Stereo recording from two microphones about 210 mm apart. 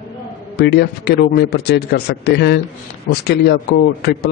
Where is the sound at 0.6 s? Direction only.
50° left (ahead or behind).